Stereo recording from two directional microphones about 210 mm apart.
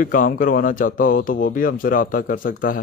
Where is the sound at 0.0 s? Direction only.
40° left (ahead or behind).